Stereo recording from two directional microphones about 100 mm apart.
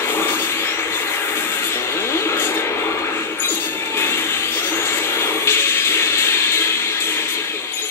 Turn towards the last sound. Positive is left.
turn(degrees=25)  # may be behind; listen again after turning